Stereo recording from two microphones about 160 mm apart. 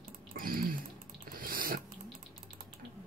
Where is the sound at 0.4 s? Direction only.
65° right (ahead or behind).